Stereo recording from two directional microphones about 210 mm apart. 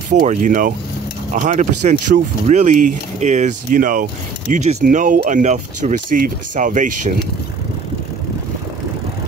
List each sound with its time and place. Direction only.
0.1 s speech: 40° right (ahead or behind)